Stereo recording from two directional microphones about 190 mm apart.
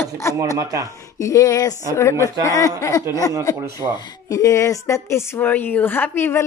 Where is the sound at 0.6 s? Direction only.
15° right (ahead or behind).